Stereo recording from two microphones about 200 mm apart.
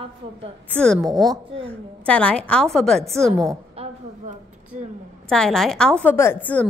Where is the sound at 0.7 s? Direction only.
5° left (ahead or behind).